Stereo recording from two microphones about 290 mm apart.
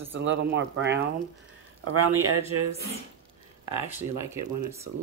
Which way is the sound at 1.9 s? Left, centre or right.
Right.